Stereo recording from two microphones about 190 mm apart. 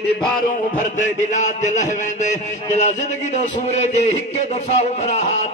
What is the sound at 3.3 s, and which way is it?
A man's voice, 35° left (ahead or behind).